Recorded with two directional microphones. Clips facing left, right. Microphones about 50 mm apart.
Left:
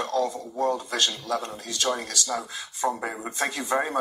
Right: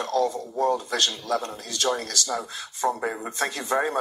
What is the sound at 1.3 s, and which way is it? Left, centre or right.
Speech, centre.